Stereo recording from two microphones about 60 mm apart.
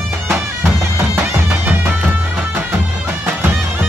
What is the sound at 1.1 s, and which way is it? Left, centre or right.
Music, right.